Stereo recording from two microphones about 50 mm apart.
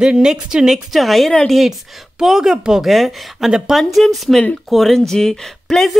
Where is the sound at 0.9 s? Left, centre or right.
Centre.